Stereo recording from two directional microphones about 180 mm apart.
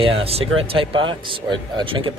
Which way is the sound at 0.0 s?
30° right (ahead or behind).